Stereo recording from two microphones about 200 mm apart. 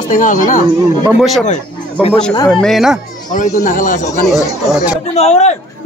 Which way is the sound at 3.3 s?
40° left (ahead or behind).